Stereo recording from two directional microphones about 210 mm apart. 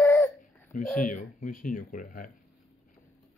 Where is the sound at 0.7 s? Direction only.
40° left (ahead or behind).